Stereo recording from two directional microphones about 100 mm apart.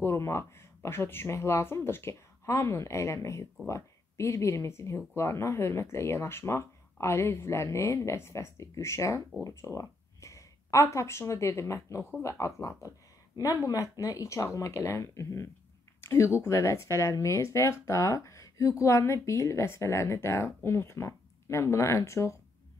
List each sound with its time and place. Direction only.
0.0 s speech: 25° left (ahead or behind)